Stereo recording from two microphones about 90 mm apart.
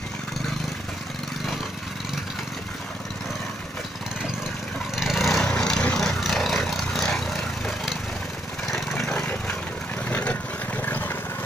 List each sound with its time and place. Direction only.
4.9 s vehicle: centre (ahead or behind)
7.6 s wood: centre (ahead or behind)
8.6 s lawn mower: centre (ahead or behind)
10.0 s vehicle: 20° left (ahead or behind)
10.8 s lawn mower: 20° left (ahead or behind)